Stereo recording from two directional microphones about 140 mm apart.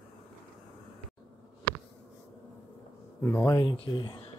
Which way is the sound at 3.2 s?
20° left (ahead or behind).